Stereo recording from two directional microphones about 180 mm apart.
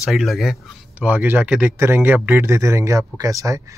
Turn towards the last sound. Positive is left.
turn(degrees=-20)  # may be behind; listen again after turning